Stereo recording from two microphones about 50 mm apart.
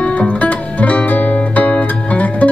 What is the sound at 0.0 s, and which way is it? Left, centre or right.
Music, left.